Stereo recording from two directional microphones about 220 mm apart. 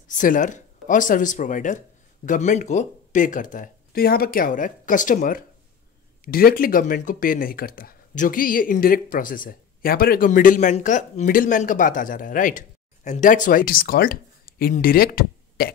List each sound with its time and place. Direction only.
0.2 s speech: 35° left (ahead or behind)